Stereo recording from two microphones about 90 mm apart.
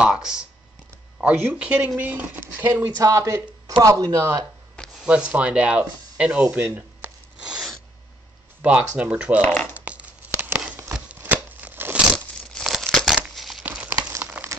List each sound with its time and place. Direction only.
0.0 s speech: 10° right (ahead or behind)
3.0 s speech: 35° right (ahead or behind)
5.0 s speech: 10° right (ahead or behind)
8.6 s speech: 20° right (ahead or behind)
9.4 s speech: 15° left (ahead or behind)
9.8 s a sound: 15° right (ahead or behind)
12.5 s tearing: 5° left (ahead or behind)
13.3 s crumpling: centre (ahead or behind)
13.7 s a sound: 20° right (ahead or behind)